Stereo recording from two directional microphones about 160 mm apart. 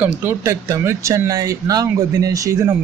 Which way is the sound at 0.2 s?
15° right (ahead or behind).